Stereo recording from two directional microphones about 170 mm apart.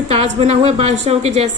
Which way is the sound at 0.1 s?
35° right (ahead or behind).